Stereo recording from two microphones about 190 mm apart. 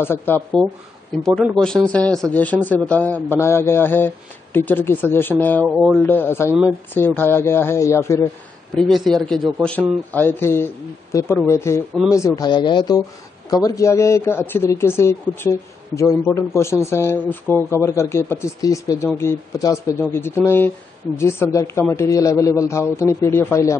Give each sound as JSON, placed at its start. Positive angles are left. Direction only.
{"t": 0.0, "sound": "a man's voice", "side_deg": 10}
{"t": 8.7, "sound": "a man's voice", "side_deg": 0}